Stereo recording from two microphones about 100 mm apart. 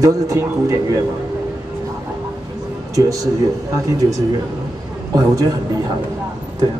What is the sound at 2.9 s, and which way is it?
A man's voice, 35° right (ahead or behind).